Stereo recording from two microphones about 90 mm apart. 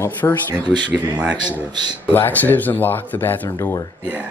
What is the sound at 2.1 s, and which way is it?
Speech, 20° left (ahead or behind).